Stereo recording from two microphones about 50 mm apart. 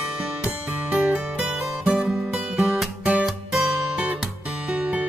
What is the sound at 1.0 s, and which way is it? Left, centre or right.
Music, right.